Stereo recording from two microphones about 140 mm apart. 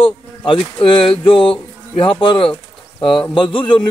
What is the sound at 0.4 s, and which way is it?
A man's voice, 35° left (ahead or behind).